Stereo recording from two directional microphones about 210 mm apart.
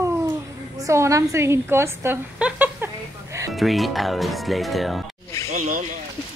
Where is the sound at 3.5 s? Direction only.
Centre (ahead or behind).